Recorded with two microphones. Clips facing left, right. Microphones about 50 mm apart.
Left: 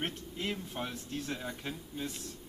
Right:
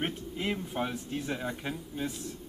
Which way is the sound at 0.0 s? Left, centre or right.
Centre.